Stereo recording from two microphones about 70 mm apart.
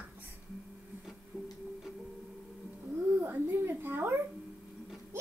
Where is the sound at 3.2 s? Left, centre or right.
Right.